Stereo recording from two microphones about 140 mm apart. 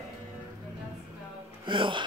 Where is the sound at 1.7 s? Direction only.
35° right (ahead or behind).